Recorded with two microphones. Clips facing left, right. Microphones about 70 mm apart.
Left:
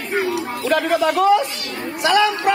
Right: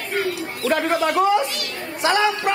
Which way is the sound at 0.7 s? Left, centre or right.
Right.